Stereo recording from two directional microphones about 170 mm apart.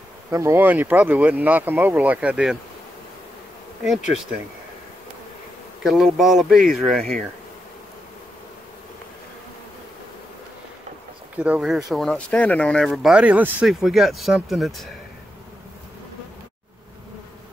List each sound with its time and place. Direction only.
0.3 s speech: 15° right (ahead or behind)
5.9 s speech: centre (ahead or behind)
11.3 s speech: 10° right (ahead or behind)